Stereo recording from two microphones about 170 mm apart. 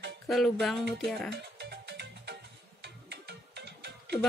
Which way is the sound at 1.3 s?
85° right.